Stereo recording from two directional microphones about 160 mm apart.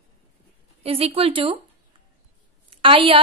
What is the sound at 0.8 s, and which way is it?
Speech, 35° right (ahead or behind).